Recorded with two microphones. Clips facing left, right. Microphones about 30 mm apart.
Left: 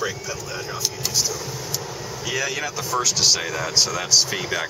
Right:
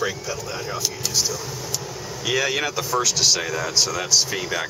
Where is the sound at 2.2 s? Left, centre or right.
Right.